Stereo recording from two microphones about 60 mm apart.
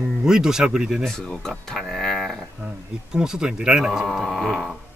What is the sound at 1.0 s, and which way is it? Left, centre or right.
Speech, centre.